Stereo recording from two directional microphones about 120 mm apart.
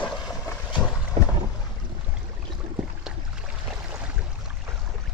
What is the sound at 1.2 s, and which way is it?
Boat, 60° right (ahead or behind).